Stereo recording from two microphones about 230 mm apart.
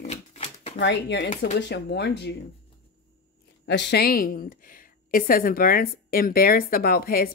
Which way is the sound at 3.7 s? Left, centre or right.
Left.